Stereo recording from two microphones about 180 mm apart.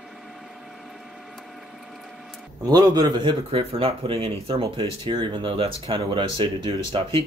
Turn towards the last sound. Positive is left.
turn(degrees=-30)  # may be behind; listen again after turning